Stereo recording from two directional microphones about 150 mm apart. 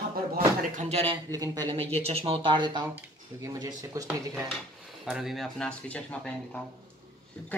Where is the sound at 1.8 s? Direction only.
40° right (ahead or behind); by 3.7 s 25° right (ahead or behind).